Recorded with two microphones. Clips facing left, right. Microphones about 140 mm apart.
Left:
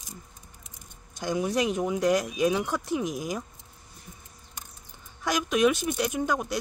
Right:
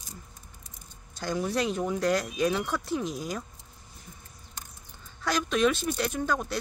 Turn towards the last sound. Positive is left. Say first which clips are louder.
# left 2 dB
turn(degrees=15)  # may be behind; listen again after turning